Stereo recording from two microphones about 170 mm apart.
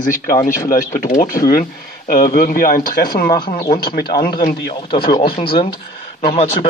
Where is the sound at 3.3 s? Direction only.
25° left (ahead or behind).